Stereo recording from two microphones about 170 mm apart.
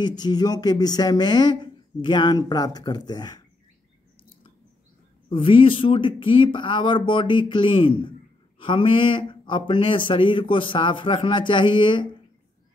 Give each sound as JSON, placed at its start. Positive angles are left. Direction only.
{"t": 0.0, "sound": "speech", "side_deg": 25}
{"t": 5.3, "sound": "speech", "side_deg": 30}